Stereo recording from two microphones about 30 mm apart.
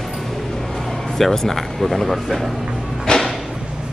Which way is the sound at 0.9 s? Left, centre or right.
Centre.